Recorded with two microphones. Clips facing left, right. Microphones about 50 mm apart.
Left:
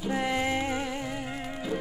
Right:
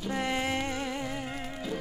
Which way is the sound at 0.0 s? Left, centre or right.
Centre.